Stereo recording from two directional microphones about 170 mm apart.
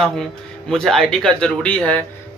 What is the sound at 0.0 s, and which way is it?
A man's voice, 5° left (ahead or behind).